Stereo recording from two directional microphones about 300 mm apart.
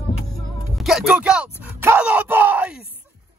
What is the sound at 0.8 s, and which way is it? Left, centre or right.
Speech, centre.